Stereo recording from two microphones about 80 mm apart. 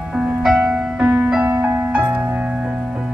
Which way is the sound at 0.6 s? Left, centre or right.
Centre.